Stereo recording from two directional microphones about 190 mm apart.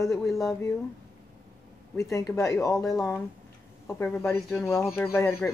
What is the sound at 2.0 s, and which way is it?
Speech, 15° left (ahead or behind).